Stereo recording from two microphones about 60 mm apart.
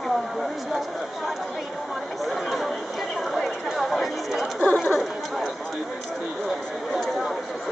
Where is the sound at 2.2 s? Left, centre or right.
Centre.